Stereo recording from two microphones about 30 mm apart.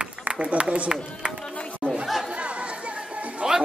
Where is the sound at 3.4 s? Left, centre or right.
Right.